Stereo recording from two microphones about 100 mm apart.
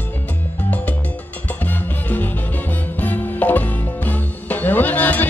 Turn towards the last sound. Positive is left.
turn(degrees=15)  # may be behind; listen again after turning